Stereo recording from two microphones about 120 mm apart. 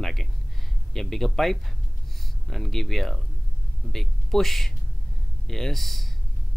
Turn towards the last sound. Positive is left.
turn(degrees=0)  # may be behind; listen again after turning